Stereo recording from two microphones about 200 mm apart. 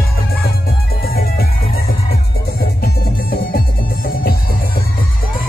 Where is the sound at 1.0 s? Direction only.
50° left (ahead or behind).